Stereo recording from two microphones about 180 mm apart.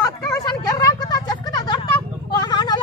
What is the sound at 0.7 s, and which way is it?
Vehicle, 20° left (ahead or behind).